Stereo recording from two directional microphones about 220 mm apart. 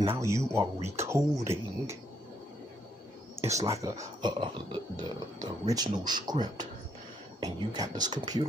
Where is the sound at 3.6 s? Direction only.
15° right (ahead or behind).